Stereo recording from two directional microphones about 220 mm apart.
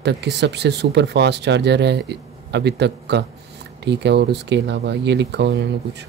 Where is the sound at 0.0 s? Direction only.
50° right (ahead or behind).